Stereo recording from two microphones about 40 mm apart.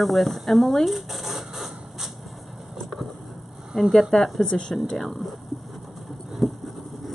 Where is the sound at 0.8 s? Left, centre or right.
Centre.